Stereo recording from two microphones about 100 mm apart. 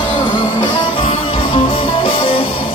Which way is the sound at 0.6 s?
60° left (ahead or behind).